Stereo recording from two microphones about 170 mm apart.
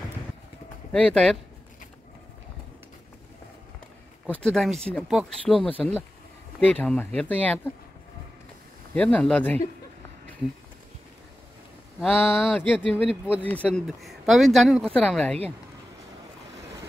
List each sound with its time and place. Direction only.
0.9 s speech: 5° left (ahead or behind)
4.3 s speech: 5° left (ahead or behind)
8.9 s speech: 5° left (ahead or behind)
12.0 s speech: centre (ahead or behind)